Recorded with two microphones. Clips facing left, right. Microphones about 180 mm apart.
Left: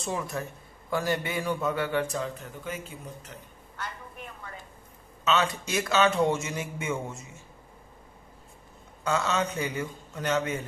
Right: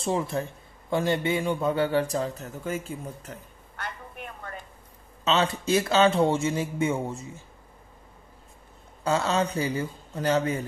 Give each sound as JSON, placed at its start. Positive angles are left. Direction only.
{"t": 0.0, "sound": "a man's voice", "side_deg": -30}
{"t": 3.3, "sound": "a sound", "side_deg": -60}
{"t": 5.2, "sound": "a man's voice", "side_deg": -30}
{"t": 9.0, "sound": "a man's voice", "side_deg": -30}